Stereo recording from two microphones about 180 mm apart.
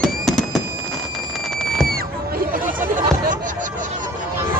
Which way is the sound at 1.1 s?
Centre (ahead or behind).